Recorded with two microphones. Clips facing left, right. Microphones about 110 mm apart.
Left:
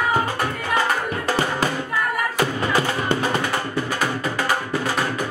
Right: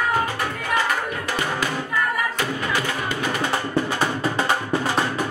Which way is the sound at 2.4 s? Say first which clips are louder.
Left 4 dB; 35° left (ahead or behind).